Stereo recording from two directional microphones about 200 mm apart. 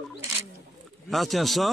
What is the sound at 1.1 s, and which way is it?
Speech, centre (ahead or behind).